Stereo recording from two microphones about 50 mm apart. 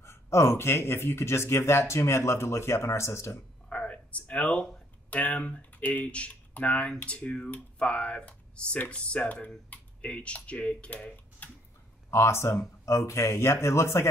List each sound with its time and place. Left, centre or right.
0.0 s speech: left
3.6 s a sound: left
5.1 s speech: left
11.4 s tick-tock: left
12.1 s speech: left